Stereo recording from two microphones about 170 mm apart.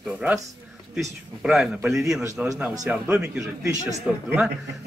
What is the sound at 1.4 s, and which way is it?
Speech, 5° right (ahead or behind).